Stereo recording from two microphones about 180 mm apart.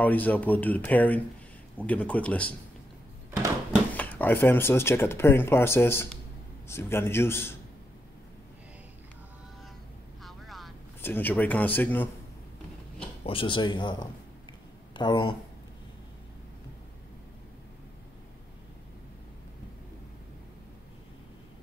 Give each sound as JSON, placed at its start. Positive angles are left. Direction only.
{"t": 0.0, "sound": "speech", "side_deg": 10}
{"t": 3.9, "sound": "speech", "side_deg": 10}
{"t": 10.2, "sound": "vehicle", "side_deg": 0}
{"t": 11.0, "sound": "speech", "side_deg": 10}
{"t": 13.2, "sound": "speech", "side_deg": 30}